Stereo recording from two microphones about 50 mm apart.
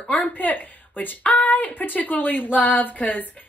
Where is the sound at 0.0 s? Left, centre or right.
Left.